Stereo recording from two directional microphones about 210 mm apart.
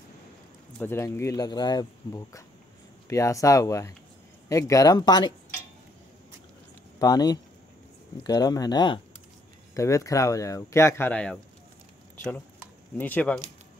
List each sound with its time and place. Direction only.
0.7 s speech: 10° left (ahead or behind)
7.0 s speech: 20° left (ahead or behind)
12.9 s speech: 10° left (ahead or behind)